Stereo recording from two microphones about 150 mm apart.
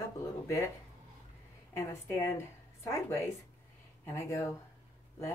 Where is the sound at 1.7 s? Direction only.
20° left (ahead or behind).